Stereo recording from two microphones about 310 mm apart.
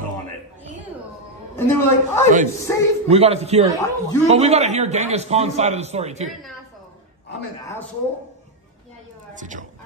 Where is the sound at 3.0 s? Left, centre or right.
Centre.